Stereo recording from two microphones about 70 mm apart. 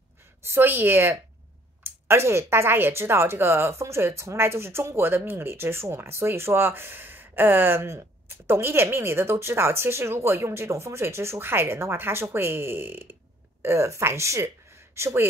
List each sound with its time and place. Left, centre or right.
0.5 s speech: right
13.6 s speech: right